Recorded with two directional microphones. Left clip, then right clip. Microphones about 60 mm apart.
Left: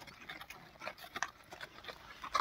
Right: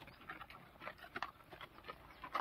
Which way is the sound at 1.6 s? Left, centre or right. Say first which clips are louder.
Left 4 dB; centre.